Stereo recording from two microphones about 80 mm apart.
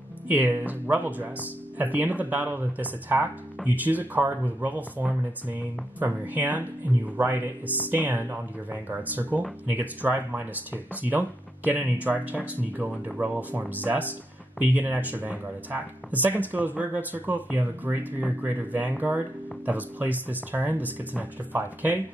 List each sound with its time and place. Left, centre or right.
0.3 s speech: right